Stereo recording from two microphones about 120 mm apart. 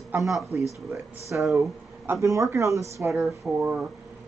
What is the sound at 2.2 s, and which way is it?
Speech, 25° right (ahead or behind).